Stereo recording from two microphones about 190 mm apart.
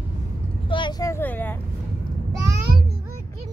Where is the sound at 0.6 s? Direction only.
25° left (ahead or behind); by 1.6 s 10° left (ahead or behind).